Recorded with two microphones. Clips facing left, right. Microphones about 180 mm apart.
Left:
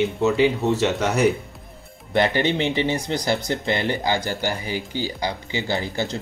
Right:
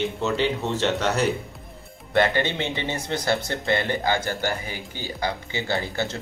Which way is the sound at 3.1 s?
15° left (ahead or behind).